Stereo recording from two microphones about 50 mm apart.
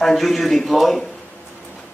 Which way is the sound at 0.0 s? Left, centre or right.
Centre.